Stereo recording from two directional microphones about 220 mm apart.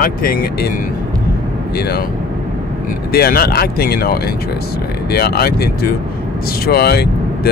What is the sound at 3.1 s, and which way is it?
Speech, 45° left (ahead or behind).